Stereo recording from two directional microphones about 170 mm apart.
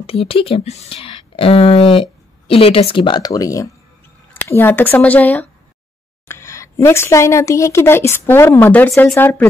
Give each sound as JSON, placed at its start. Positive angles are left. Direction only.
{"t": 0.0, "sound": "speech", "side_deg": 35}